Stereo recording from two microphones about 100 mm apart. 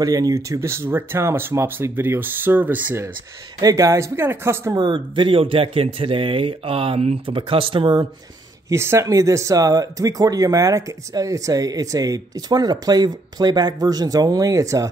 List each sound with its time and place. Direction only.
0.0 s speech: 35° right (ahead or behind); by 3.1 s 20° right (ahead or behind)
3.6 s speech: 35° right (ahead or behind)
4.7 s speech: 50° right (ahead or behind)
8.6 s speech: 30° right (ahead or behind)